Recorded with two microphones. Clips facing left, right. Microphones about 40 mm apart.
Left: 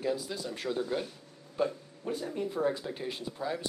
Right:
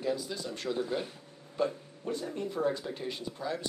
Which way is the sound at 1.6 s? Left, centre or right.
Centre.